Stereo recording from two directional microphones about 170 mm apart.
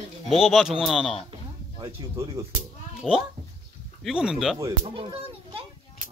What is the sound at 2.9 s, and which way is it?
Speech, 5° right (ahead or behind).